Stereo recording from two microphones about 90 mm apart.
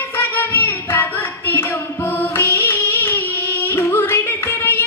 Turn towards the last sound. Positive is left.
turn(degrees=25)  # may be behind; listen again after turning